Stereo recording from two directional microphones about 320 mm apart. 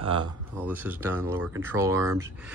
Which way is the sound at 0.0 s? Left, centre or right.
Centre.